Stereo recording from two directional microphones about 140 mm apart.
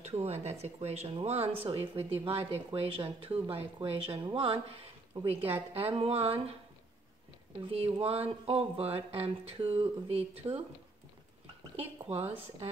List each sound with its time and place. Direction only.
0.0 s speech: 50° right (ahead or behind)
7.7 s speech: 45° right (ahead or behind)
11.7 s speech: 45° right (ahead or behind)